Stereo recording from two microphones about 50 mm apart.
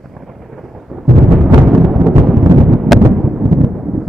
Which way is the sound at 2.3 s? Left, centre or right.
Centre.